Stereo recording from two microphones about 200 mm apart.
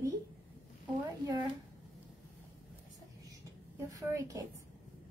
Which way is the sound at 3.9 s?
15° right (ahead or behind).